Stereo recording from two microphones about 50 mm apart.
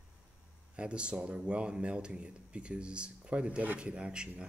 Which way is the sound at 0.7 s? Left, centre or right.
Right.